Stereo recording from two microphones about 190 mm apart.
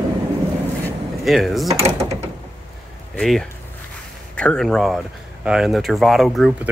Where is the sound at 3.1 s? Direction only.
Centre (ahead or behind).